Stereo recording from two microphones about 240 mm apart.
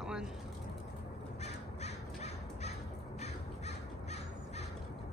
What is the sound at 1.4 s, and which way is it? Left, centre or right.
Crow, left.